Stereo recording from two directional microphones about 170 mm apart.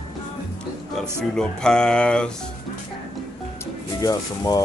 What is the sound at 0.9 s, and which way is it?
Speech, 5° left (ahead or behind).